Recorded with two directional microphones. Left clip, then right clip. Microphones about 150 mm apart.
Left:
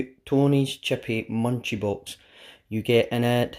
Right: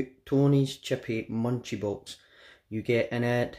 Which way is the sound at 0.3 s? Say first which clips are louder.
Left 3 dB; 20° left (ahead or behind).